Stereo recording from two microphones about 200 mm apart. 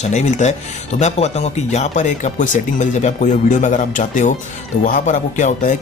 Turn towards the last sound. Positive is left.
turn(degrees=35)  # may be behind; listen again after turning